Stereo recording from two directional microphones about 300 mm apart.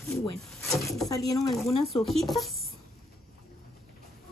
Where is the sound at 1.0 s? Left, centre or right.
Centre.